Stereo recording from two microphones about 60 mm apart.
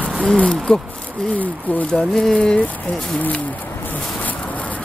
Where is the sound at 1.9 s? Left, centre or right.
Centre.